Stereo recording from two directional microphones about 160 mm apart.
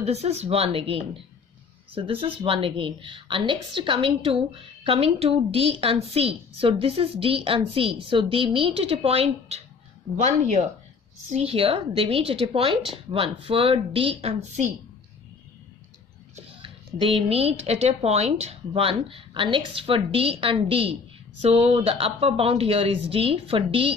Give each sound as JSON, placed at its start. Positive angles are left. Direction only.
{"t": 0.0, "sound": "a woman's voice", "side_deg": -40}
{"t": 16.6, "sound": "a woman's voice", "side_deg": -35}